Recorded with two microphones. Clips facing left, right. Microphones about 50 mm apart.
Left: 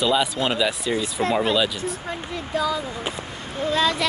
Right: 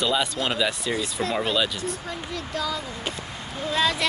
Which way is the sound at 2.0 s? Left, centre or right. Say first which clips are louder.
Left 2 dB; left.